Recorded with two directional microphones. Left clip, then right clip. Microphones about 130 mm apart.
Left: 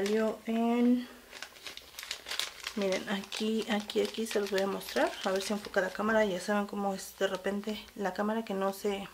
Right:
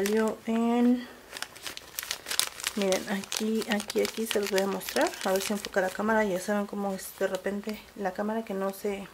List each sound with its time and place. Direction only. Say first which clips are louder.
0.0 s speech: right 3 dB; 70° right (ahead or behind)
2.0 s crumpling: right 5 dB; 65° right (ahead or behind)
3.1 s speech: right 3 dB; 30° right (ahead or behind)
6.8 s speech: right 2 dB; 25° right (ahead or behind)